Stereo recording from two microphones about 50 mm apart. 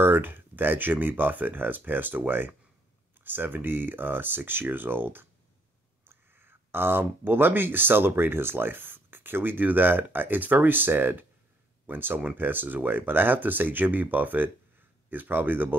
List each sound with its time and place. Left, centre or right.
0.0 s speech: right